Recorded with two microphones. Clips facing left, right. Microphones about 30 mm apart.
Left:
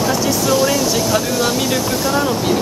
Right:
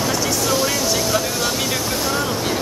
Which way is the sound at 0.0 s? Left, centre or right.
Centre.